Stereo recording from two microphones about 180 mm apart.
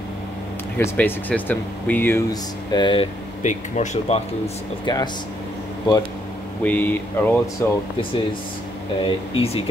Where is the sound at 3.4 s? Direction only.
45° left (ahead or behind).